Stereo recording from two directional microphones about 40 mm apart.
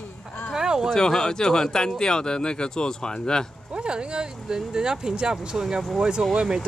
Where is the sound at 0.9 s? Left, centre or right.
Centre.